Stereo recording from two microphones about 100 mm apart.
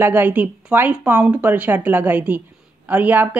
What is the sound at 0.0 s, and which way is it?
Speech, 20° right (ahead or behind).